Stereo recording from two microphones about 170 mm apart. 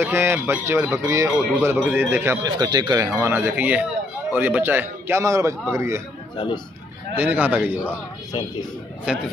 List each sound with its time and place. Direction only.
0.0 s a man's voice: 15° right (ahead or behind)
6.3 s speech: 30° left (ahead or behind)
7.2 s a man's voice: 10° right (ahead or behind)
8.3 s speech: 25° left (ahead or behind)
9.1 s a man's voice: 5° right (ahead or behind)